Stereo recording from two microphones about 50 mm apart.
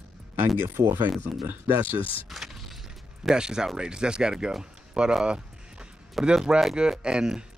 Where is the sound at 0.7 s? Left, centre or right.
Right.